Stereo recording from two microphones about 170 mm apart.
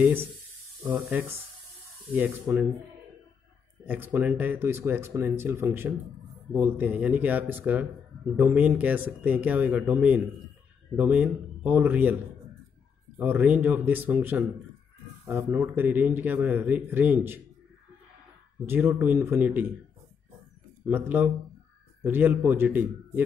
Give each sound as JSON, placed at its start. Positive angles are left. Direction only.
{"t": 0.0, "sound": "speech", "side_deg": -10}
{"t": 3.8, "sound": "speech", "side_deg": -10}
{"t": 13.2, "sound": "speech", "side_deg": -10}
{"t": 18.7, "sound": "speech", "side_deg": -10}
{"t": 20.9, "sound": "speech", "side_deg": -10}